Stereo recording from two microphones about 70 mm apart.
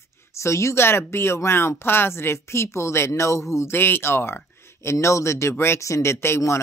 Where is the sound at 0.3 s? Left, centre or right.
Left.